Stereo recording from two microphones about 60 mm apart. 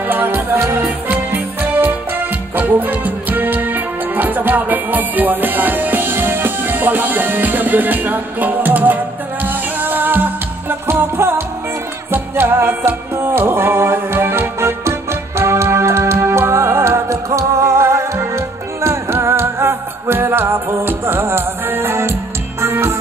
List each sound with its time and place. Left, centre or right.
0.0 s music: right